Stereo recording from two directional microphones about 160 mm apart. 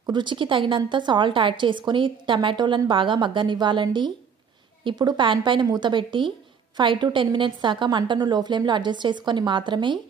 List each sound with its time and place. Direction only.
0.0 s a woman's voice: 30° right (ahead or behind)